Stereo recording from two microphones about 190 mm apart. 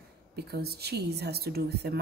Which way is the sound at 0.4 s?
55° right (ahead or behind).